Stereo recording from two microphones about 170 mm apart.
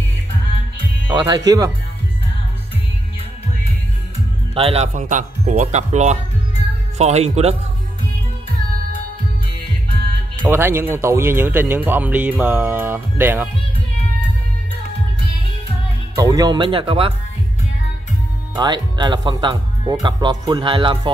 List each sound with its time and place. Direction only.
1.1 s speech: 25° right (ahead or behind)
4.6 s speech: 35° right (ahead or behind)
4.9 s speech: 50° right (ahead or behind)
10.4 s speech: 15° right (ahead or behind)
16.2 s speech: 20° right (ahead or behind)
18.5 s speech: 25° right (ahead or behind)